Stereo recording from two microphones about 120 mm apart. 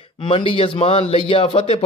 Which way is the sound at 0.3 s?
50° left (ahead or behind).